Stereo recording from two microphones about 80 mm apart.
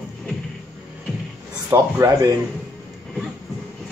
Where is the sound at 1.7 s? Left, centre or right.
Right.